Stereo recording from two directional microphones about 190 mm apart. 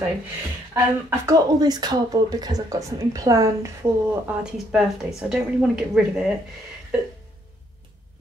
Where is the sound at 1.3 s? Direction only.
20° right (ahead or behind).